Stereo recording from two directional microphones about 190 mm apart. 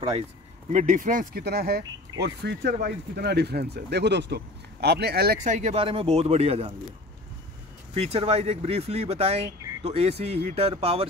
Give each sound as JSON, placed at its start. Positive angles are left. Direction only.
{"t": 0.7, "sound": "speech", "side_deg": -40}
{"t": 5.4, "sound": "speech", "side_deg": -40}
{"t": 7.9, "sound": "speech", "side_deg": -30}